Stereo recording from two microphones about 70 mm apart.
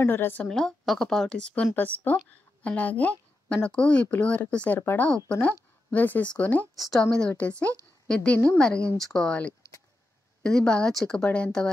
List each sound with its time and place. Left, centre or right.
0.0 s a woman's voice: left
0.4 s speech: centre
1.8 s speech: left
4.7 s a woman's voice: left
5.0 s speech: centre
6.7 s a woman's voice: centre
7.0 s speech: centre